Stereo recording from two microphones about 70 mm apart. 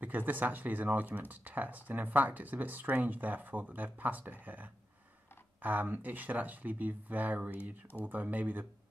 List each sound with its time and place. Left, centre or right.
0.0 s speech: right